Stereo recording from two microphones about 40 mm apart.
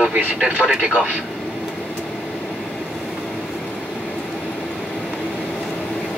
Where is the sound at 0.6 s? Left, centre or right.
Centre.